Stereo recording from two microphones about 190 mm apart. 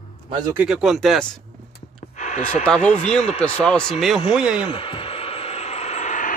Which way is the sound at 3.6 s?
5° left (ahead or behind).